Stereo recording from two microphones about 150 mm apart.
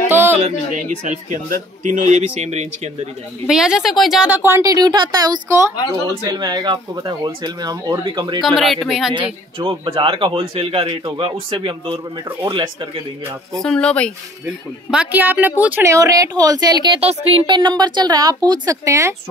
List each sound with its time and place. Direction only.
0.1 s a sound: 15° right (ahead or behind)
0.4 s a man's voice: 55° right (ahead or behind)
3.4 s speech: 5° right (ahead or behind); by 8.5 s 30° right (ahead or behind)
8.5 s speech: centre (ahead or behind)
9.1 s speech: 35° right (ahead or behind)
13.6 s speech: 5° left (ahead or behind)
14.4 s speech: 10° right (ahead or behind)